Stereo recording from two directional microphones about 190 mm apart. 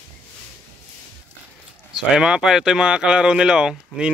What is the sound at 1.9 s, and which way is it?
Speech, 5° right (ahead or behind).